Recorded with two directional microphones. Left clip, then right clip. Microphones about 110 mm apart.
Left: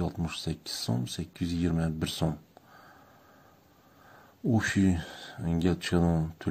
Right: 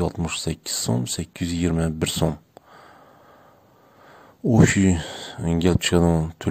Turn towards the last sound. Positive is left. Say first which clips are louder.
# right 9 dB
turn(degrees=-40)  # may be behind; listen again after turning